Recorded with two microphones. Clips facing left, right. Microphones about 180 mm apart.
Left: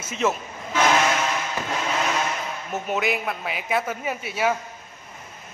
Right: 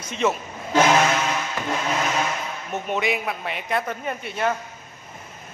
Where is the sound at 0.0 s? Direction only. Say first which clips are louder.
Right 1 dB; centre (ahead or behind).